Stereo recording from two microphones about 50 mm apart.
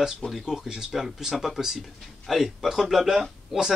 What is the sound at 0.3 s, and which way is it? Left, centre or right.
Speech, centre.